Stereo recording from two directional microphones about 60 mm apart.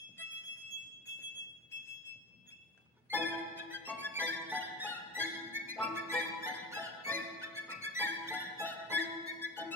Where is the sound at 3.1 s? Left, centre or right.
Left.